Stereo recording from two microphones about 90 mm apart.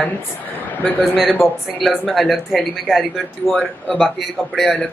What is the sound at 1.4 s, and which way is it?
Speech, centre (ahead or behind).